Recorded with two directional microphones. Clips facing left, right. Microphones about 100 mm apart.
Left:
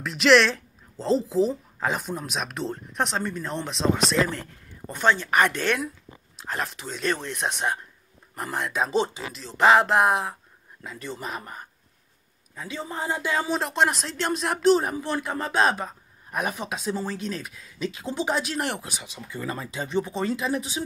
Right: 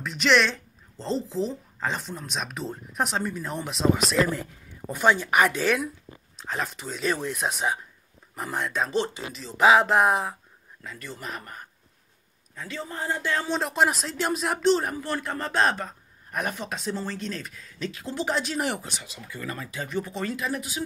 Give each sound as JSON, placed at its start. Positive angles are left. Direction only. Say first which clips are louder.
{"t": 0.0, "sound": "a woman's voice", "louder": "left 4 dB", "side_deg": 0}
{"t": 8.8, "sound": "a man's voice", "louder": "left 5 dB", "side_deg": 15}
{"t": 9.3, "sound": "speech", "louder": "even", "side_deg": 0}
{"t": 10.8, "sound": "a man's voice", "louder": "left 4 dB", "side_deg": 20}
{"t": 13.6, "sound": "speech", "louder": "even", "side_deg": -5}
{"t": 14.8, "sound": "a man's voice", "louder": "left 2 dB", "side_deg": 20}
{"t": 18.4, "sound": "speech", "louder": "even", "side_deg": 0}
{"t": 18.9, "sound": "speech", "louder": "left 1 dB", "side_deg": 15}